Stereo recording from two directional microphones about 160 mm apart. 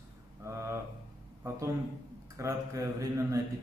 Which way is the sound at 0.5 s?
15° right (ahead or behind).